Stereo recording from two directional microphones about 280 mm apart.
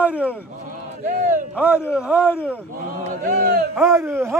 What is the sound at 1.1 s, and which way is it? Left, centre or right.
Speech, right.